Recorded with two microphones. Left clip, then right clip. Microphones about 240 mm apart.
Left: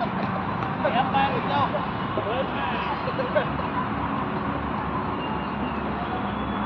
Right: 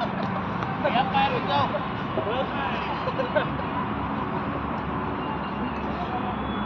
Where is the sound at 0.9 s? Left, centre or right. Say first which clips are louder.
Even; right.